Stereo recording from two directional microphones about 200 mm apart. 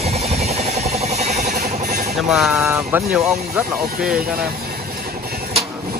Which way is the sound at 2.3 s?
5° right (ahead or behind).